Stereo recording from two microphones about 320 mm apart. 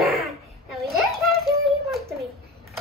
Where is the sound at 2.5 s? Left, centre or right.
Right.